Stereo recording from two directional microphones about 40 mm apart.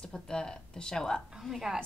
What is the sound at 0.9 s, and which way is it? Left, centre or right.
Speech, centre.